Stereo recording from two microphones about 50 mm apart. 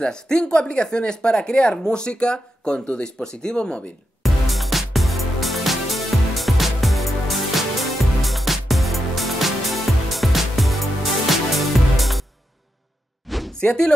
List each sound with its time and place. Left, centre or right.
0.0 s speech: centre
4.2 s music: centre
13.5 s speech: centre